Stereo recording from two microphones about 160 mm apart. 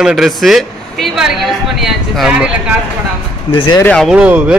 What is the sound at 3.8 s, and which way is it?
Speech, 5° left (ahead or behind).